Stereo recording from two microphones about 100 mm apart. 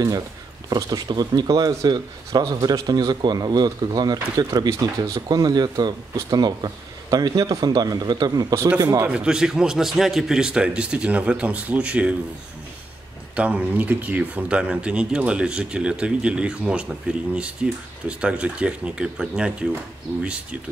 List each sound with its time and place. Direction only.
0.7 s speech: 40° right (ahead or behind)
9.1 s speech: 10° right (ahead or behind)
13.4 s speech: 15° right (ahead or behind)